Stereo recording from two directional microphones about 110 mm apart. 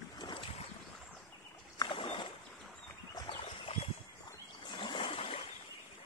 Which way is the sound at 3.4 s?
60° left (ahead or behind).